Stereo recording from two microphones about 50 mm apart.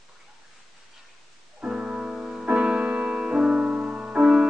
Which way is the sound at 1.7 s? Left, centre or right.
Centre.